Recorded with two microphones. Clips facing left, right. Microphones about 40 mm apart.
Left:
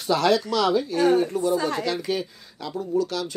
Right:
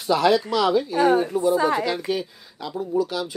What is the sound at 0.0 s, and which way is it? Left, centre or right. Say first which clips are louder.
Speech: right 2 dB; centre.